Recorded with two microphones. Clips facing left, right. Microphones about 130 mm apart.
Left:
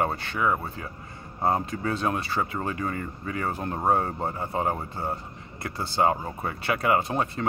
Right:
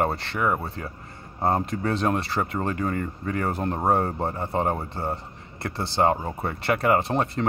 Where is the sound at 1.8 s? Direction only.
35° right (ahead or behind).